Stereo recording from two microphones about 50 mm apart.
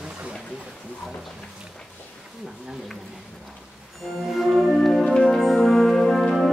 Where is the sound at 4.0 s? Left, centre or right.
Centre.